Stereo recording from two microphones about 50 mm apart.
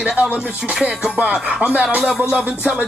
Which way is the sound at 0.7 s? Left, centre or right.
Centre.